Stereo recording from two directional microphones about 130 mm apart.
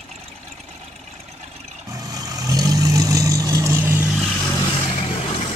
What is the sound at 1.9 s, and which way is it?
Vehicle, 30° right (ahead or behind).